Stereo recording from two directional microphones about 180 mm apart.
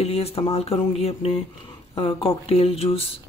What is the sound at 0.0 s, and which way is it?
Speech, 35° left (ahead or behind).